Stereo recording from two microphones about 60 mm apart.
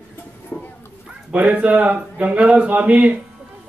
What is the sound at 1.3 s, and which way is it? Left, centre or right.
Speech, right.